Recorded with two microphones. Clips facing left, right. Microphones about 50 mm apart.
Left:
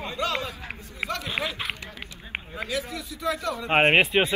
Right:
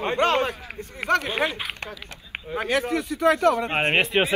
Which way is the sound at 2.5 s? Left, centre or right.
Right.